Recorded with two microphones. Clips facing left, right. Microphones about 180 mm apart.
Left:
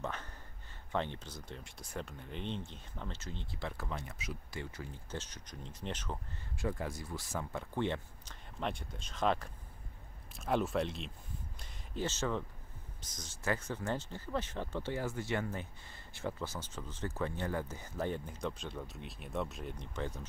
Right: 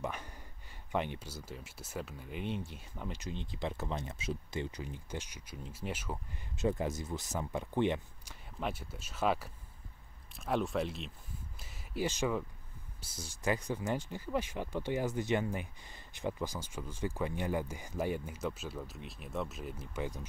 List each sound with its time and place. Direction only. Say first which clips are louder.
0.0 s speech: right 1 dB; 10° right (ahead or behind)
6.5 s speech: right 5 dB; 20° right (ahead or behind)
8.5 s speech: even; 5° right (ahead or behind)